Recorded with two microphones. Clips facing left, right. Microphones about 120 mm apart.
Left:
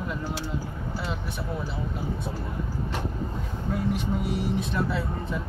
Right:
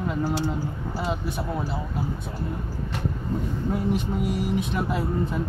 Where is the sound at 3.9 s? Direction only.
50° right (ahead or behind).